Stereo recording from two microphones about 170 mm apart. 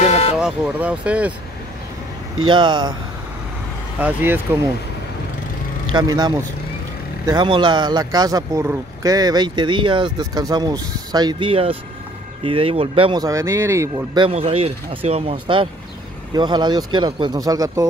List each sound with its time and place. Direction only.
0.0 s vehicle: 40° left (ahead or behind)
0.4 s speech: 5° right (ahead or behind)
2.4 s speech: 25° right (ahead or behind)
4.0 s speech: 10° right (ahead or behind)
5.9 s speech: 25° right (ahead or behind)
14.3 s speech: 35° right (ahead or behind); by 17.8 s 20° right (ahead or behind)